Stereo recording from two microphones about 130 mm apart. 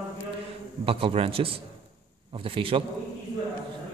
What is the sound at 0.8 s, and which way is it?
A man's voice, 45° right (ahead or behind).